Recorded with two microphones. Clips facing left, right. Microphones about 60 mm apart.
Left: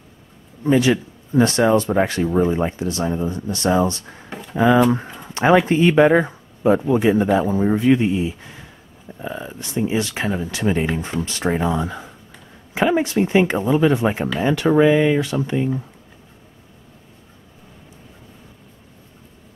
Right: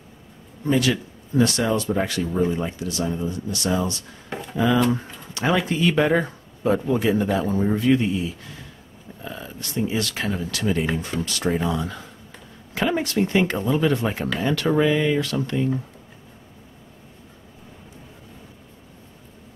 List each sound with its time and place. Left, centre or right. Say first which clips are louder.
0.7 s speech: left 5 dB; left
4.3 s a sound: right 2 dB; centre
4.6 s speech: left 5 dB; left